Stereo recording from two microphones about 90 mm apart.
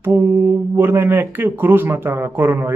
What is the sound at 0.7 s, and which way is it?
Speech, 25° right (ahead or behind).